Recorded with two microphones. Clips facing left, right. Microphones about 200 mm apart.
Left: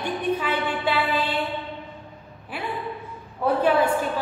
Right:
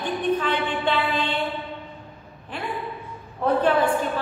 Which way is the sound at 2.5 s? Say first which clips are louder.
Even; 5° left (ahead or behind).